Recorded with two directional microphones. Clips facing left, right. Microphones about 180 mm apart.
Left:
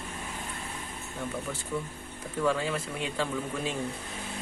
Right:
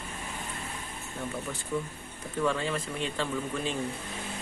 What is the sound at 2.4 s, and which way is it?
Speech, 5° left (ahead or behind).